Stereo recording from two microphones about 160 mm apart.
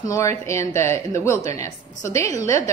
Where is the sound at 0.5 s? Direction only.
15° left (ahead or behind).